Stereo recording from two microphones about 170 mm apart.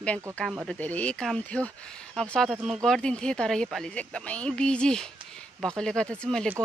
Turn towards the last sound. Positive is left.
turn(degrees=5)  # may be behind; listen again after turning